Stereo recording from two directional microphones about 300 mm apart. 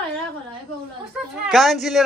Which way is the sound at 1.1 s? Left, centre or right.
Centre.